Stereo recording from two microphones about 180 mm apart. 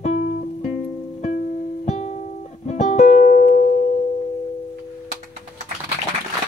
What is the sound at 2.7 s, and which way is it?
Music, 40° left (ahead or behind).